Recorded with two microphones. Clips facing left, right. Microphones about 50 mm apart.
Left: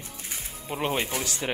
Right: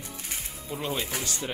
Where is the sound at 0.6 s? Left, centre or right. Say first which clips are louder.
Left 4 dB; left.